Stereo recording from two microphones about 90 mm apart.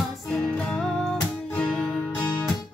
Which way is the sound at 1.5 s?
15° left (ahead or behind).